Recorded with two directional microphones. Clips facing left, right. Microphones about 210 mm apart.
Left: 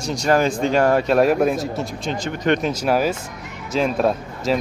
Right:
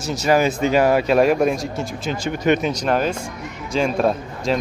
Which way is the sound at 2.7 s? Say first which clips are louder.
Left 1 dB; 5° left (ahead or behind).